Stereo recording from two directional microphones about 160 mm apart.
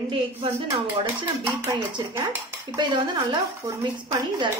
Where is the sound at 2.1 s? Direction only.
15° right (ahead or behind).